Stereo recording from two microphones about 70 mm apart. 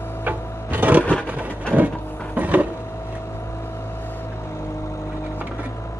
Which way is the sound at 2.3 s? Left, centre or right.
Right.